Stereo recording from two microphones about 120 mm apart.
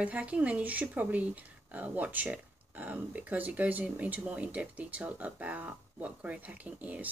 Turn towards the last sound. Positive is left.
turn(degrees=-15)  # may be behind; listen again after turning